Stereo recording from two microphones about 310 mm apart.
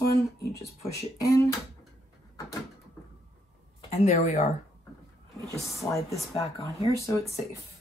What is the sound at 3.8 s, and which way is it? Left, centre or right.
Speech, left.